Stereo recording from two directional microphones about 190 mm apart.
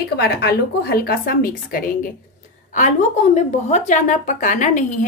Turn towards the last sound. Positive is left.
turn(degrees=40)  # may be behind; listen again after turning